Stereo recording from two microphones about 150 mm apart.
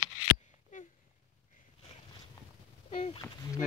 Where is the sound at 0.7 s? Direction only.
60° left (ahead or behind).